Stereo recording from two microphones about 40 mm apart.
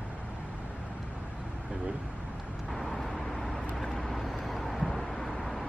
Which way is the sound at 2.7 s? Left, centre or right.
Centre.